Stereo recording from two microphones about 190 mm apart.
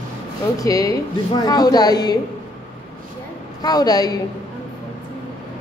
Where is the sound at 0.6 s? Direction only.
20° left (ahead or behind).